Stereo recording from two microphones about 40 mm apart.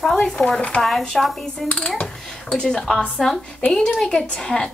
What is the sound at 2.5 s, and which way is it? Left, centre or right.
Speech, centre.